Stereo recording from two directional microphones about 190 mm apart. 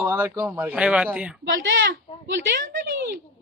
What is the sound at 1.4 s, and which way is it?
Speech, 75° right (ahead or behind).